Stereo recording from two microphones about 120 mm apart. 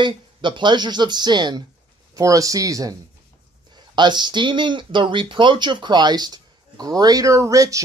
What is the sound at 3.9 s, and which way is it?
Speech, 40° right (ahead or behind).